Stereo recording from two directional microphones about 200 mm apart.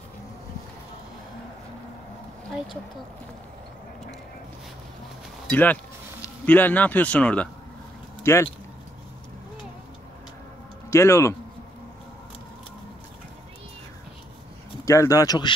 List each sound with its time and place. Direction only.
5.5 s speech: 10° left (ahead or behind)
10.9 s speech: 15° left (ahead or behind)
14.9 s speech: 15° left (ahead or behind)